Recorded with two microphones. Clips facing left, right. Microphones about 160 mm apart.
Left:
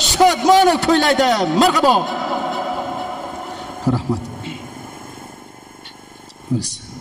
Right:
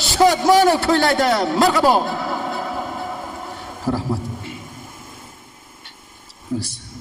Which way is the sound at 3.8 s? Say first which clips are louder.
Left 3 dB; 20° left (ahead or behind).